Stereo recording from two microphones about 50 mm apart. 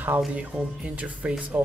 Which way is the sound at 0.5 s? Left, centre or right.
Centre.